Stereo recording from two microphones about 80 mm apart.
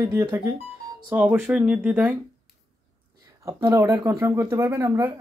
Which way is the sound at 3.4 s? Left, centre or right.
Right.